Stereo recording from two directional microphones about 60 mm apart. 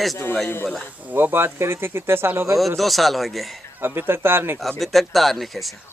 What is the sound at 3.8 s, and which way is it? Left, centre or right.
Speech, right.